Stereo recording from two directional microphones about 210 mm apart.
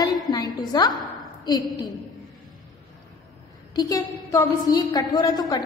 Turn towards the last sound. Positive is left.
turn(degrees=20)  # may be behind; listen again after turning